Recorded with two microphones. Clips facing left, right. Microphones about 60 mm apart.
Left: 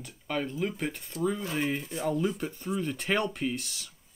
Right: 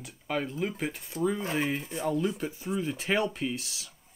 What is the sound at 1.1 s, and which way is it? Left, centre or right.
Speech, centre.